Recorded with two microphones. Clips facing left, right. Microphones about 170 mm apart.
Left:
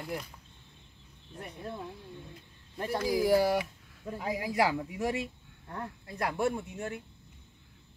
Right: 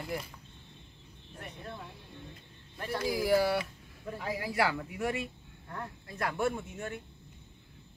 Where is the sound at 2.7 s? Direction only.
20° left (ahead or behind).